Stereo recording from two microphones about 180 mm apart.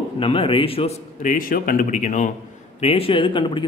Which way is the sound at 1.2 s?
50° left (ahead or behind).